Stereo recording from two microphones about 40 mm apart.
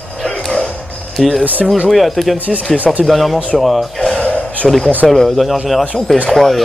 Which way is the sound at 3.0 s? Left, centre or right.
Centre.